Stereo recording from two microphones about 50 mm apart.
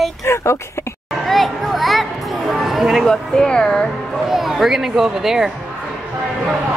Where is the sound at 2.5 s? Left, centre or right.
Centre.